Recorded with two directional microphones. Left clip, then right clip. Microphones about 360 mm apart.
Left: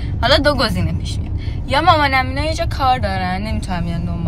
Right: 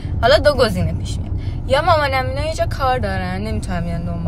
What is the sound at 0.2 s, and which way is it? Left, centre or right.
A woman's voice, centre.